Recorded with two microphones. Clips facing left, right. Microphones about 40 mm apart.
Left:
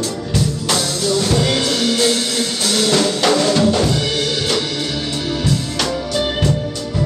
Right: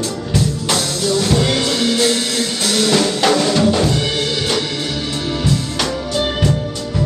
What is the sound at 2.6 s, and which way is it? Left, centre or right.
Music, right.